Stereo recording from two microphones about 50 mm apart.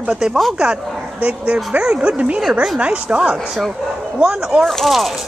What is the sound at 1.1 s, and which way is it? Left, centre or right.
Speech, right.